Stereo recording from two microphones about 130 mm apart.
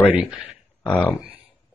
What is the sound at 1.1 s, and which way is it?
Speech, 10° right (ahead or behind).